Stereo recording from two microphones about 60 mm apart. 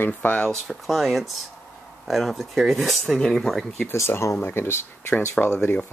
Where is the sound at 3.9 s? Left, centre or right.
Left.